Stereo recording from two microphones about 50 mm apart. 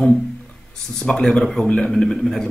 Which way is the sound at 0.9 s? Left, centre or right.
Centre.